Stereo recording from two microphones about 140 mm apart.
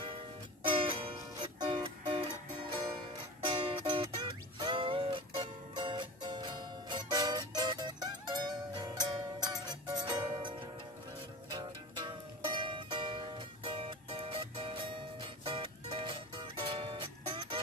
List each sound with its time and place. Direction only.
0.7 s music: 40° right (ahead or behind)
3.4 s music: 35° right (ahead or behind)
11.5 s music: 30° right (ahead or behind)